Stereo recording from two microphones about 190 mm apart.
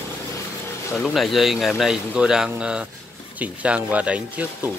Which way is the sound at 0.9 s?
Centre (ahead or behind).